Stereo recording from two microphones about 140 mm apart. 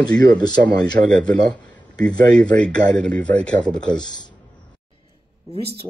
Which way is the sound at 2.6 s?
5° left (ahead or behind).